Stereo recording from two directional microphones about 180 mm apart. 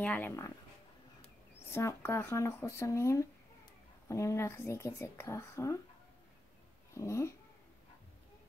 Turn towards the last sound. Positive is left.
turn(degrees=15)  # may be behind; listen again after turning